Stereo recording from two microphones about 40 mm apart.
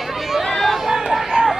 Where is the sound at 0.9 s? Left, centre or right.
Centre.